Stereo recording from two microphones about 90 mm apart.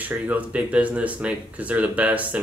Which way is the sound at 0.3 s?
15° right (ahead or behind).